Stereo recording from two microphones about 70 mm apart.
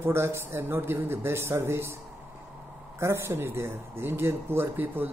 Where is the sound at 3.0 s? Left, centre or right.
Right.